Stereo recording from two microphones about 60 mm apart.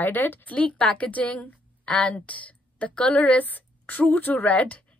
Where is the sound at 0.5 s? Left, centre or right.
Centre.